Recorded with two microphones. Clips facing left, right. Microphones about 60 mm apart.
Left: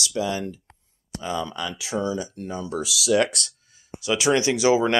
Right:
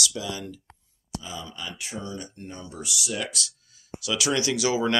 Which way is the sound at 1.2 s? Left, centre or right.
Left.